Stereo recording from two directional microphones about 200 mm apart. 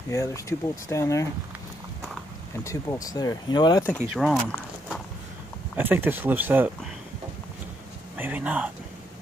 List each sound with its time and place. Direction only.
0.1 s speech: 15° left (ahead or behind)
2.6 s speech: 15° left (ahead or behind)
4.0 s speech: 5° right (ahead or behind)
5.8 s speech: 10° right (ahead or behind)
8.2 s speech: 10° right (ahead or behind)